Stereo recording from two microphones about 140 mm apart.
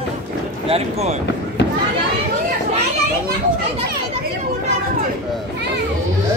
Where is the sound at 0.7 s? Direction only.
50° right (ahead or behind).